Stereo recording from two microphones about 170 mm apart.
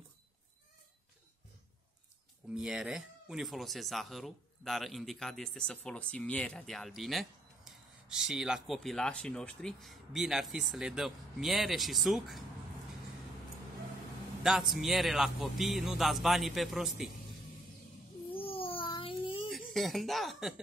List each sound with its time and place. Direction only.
2.5 s speech: 5° right (ahead or behind)
14.4 s speech: centre (ahead or behind)
18.3 s a sound: 30° left (ahead or behind)
19.5 s speech: centre (ahead or behind)